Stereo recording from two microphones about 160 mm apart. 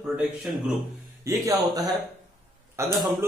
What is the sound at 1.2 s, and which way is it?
A man's voice, 20° right (ahead or behind).